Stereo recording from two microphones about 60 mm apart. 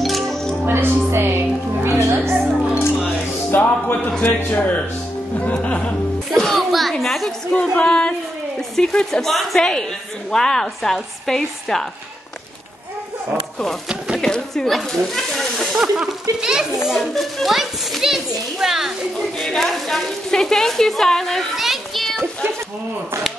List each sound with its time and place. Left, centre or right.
0.0 s music: centre
0.7 s music: right
2.3 s music: centre
3.5 s music: left
4.2 s a man's voice: left
6.3 s a sound: centre
7.5 s a woman's voice: centre
13.8 s speech: centre
14.2 s a child's voice: centre
15.7 s a child's voice: centre